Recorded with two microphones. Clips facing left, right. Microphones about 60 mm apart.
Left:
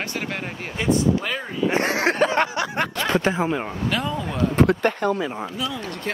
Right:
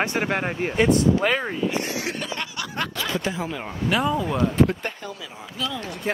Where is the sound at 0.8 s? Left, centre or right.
Right.